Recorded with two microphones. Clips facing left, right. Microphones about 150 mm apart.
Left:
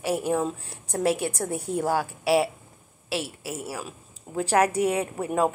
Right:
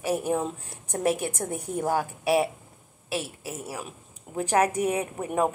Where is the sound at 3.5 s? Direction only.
20° right (ahead or behind).